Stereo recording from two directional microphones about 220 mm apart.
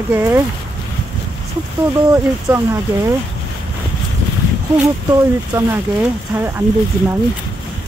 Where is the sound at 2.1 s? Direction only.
10° right (ahead or behind).